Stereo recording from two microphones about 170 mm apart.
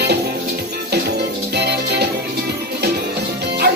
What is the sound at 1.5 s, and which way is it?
Music, 75° right (ahead or behind).